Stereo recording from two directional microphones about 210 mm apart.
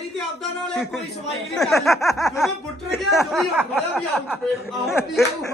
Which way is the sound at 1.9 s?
15° left (ahead or behind).